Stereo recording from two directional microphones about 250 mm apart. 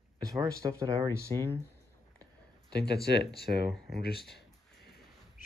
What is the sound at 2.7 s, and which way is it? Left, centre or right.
Speech, left.